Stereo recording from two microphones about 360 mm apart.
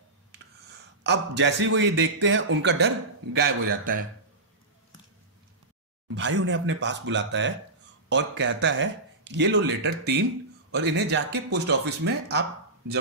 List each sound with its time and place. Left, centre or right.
1.0 s speech: right
6.1 s speech: right